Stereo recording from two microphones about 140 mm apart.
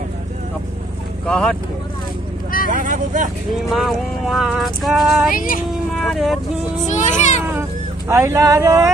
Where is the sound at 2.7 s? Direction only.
70° right (ahead or behind).